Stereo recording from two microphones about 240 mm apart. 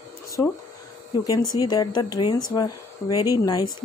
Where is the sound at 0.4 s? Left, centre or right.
Centre.